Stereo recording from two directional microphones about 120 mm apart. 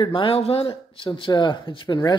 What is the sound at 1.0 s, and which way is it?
Speech, 40° left (ahead or behind).